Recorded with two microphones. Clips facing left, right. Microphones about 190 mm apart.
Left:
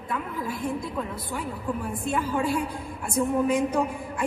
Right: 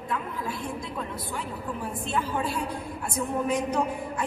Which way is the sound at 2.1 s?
10° left (ahead or behind).